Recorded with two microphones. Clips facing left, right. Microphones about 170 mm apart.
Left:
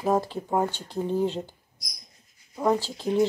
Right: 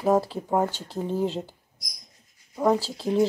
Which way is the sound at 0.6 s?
40° right (ahead or behind).